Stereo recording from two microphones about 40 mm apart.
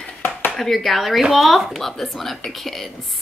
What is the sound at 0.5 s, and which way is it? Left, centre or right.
Speech, centre.